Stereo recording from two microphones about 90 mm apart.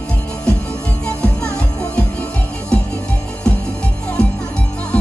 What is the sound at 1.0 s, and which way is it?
Music, 10° left (ahead or behind).